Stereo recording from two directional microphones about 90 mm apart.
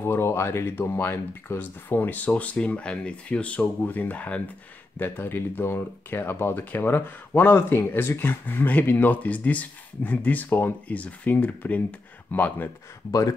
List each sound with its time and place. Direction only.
0.0 s speech: 30° left (ahead or behind)